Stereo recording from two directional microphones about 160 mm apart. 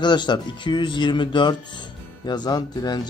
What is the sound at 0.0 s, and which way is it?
Speech, 30° left (ahead or behind).